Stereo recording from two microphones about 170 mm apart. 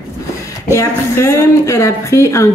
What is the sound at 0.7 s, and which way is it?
A woman's voice, 15° left (ahead or behind).